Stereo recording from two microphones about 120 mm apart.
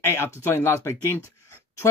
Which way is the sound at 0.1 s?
20° left (ahead or behind).